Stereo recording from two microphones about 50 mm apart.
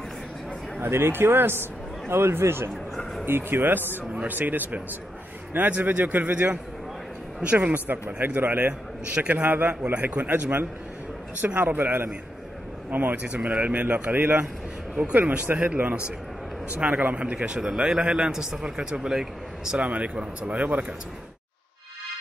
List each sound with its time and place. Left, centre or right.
0.7 s speech: right
2.7 s a sound: centre
3.3 s speech: right
6.3 s speech: right
15.4 s a man's voice: right; by 19.8 s centre
19.8 s speech: right